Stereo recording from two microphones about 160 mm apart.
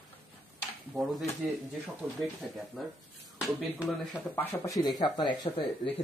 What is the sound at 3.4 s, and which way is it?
Speech, 5° right (ahead or behind).